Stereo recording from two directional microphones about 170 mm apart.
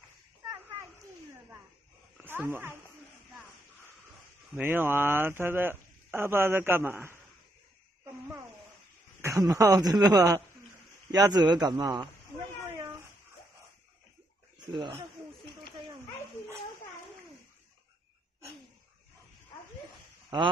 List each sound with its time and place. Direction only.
0.5 s children playing: 15° right (ahead or behind)
2.1 s speech: 10° right (ahead or behind)
4.6 s speech: 10° right (ahead or behind)
9.2 s speech: 20° right (ahead or behind)
14.7 s speech: 25° right (ahead or behind)